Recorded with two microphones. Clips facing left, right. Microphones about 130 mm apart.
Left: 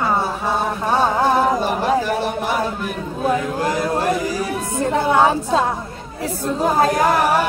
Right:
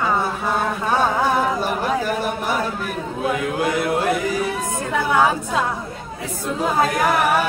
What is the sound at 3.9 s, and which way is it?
A capella, 25° left (ahead or behind).